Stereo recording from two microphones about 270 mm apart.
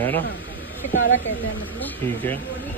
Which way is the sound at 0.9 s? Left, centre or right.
Left.